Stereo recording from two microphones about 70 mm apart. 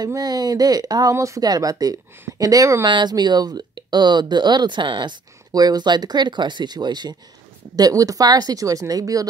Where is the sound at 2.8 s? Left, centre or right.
Right.